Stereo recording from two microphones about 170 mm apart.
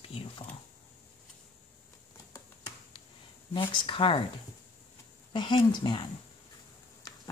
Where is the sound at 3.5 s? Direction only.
30° left (ahead or behind).